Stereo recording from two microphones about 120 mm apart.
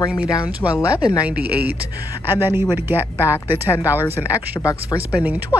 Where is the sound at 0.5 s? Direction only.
10° right (ahead or behind).